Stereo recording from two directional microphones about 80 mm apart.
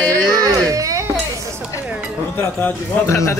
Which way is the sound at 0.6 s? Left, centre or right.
Right.